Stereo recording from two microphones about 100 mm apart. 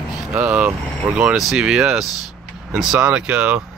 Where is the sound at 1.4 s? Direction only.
5° right (ahead or behind).